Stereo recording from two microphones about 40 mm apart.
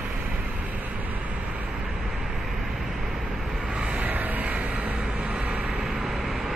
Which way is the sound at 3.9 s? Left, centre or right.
Right.